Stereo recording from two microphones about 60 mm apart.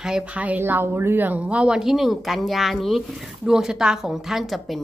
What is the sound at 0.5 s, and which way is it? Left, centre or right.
Speech, right.